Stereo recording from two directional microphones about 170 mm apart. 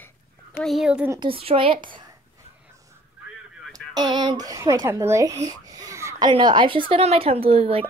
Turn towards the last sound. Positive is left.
turn(degrees=-35)  # may be behind; listen again after turning